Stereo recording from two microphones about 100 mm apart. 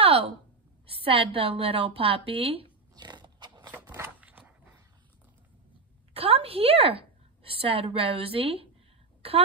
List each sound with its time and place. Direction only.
0.0 s a sound: 70° right (ahead or behind)
0.8 s a woman's voice: 70° right (ahead or behind)
2.9 s biting: 45° right (ahead or behind)
4.2 s walk: 15° right (ahead or behind)
6.1 s a woman's voice: 75° right (ahead or behind)